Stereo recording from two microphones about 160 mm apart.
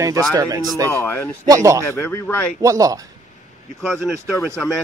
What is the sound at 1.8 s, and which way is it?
Speech, 15° left (ahead or behind).